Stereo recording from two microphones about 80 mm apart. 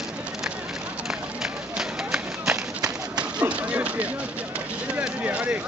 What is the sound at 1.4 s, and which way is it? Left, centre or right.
Run, centre.